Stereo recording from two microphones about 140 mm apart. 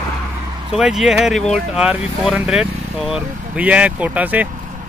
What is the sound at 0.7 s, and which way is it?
Speech, 5° right (ahead or behind).